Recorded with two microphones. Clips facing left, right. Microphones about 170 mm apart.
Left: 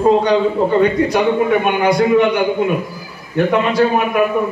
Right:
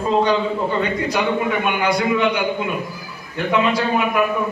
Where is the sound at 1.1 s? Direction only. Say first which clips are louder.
Left 6 dB; 50° left (ahead or behind).